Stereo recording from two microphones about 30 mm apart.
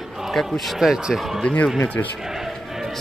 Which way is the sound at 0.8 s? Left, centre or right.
Centre.